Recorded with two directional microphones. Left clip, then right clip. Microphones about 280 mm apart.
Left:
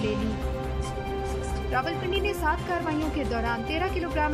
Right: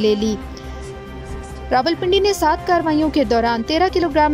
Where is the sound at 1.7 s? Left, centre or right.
Right.